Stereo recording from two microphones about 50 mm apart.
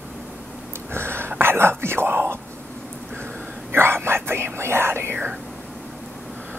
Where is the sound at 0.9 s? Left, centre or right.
Right.